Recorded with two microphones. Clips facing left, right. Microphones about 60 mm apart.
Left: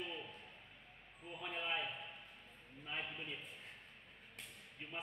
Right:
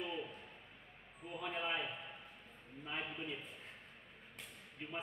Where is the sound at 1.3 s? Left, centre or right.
Centre.